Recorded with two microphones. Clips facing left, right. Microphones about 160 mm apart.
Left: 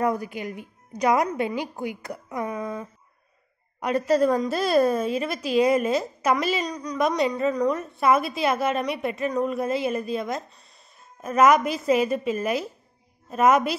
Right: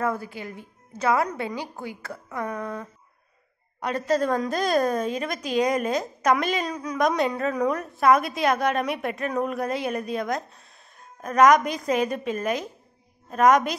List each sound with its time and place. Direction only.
0.0 s a woman's voice: 15° left (ahead or behind)